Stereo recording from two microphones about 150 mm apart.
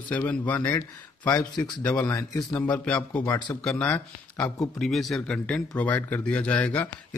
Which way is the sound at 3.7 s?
10° left (ahead or behind).